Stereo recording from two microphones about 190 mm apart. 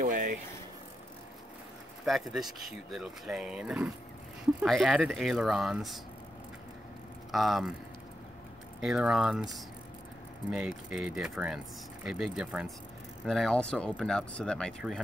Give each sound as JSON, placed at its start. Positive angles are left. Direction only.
{"t": 0.0, "sound": "speech", "side_deg": -45}
{"t": 2.0, "sound": "speech", "side_deg": 0}
{"t": 7.2, "sound": "speech", "side_deg": 0}
{"t": 8.8, "sound": "speech", "side_deg": -5}